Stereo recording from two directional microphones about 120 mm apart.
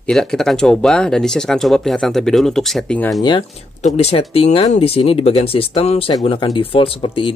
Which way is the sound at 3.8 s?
60° left (ahead or behind).